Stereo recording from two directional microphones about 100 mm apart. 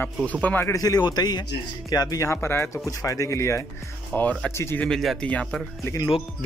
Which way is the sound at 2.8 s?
35° left (ahead or behind).